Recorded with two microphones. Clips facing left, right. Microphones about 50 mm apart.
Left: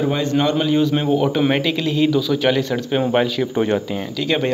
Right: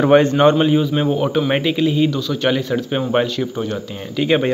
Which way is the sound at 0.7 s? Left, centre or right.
Centre.